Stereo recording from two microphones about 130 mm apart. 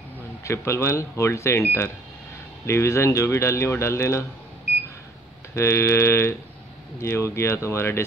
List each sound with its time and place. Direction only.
0.4 s speech: 20° left (ahead or behind)
2.6 s speech: 20° left (ahead or behind)
5.5 s speech: 20° left (ahead or behind)